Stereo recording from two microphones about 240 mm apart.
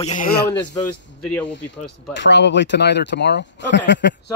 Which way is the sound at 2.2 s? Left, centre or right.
Left.